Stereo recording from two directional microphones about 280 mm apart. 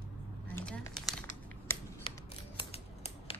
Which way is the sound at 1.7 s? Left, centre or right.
Centre.